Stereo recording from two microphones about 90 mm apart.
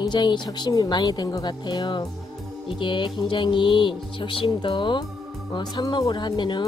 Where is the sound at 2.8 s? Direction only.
65° left (ahead or behind).